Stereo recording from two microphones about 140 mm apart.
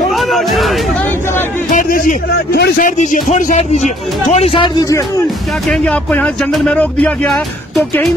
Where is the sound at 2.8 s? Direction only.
65° left (ahead or behind).